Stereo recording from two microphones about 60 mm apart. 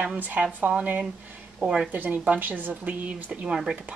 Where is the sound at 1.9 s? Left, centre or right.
Right.